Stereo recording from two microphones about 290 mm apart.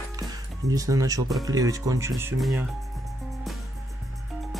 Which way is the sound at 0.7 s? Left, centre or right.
Centre.